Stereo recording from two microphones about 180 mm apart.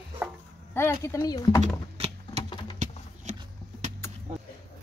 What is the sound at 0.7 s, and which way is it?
Speech, 15° left (ahead or behind).